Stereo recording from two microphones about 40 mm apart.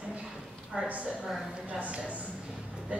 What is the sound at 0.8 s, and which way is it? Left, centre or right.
A woman's voice, right.